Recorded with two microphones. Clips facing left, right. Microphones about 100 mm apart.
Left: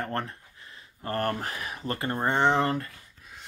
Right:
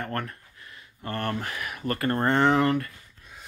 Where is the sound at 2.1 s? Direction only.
15° left (ahead or behind).